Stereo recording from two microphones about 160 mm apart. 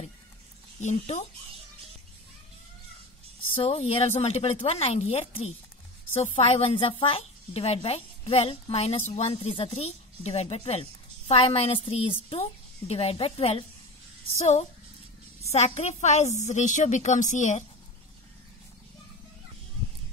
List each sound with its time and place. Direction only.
0.7 s a woman's voice: 45° left (ahead or behind)
3.6 s a woman's voice: 40° left (ahead or behind)